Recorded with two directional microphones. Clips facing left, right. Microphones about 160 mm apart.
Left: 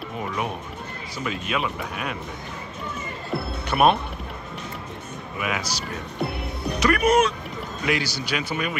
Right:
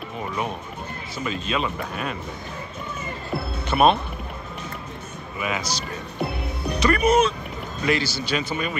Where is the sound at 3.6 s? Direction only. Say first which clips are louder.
Right 1 dB; 10° left (ahead or behind).